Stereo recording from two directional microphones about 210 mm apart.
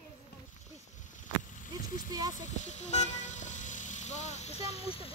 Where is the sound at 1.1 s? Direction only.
35° left (ahead or behind).